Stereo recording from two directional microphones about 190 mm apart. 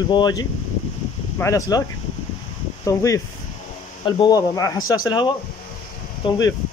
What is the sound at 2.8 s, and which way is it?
Speech, 15° left (ahead or behind).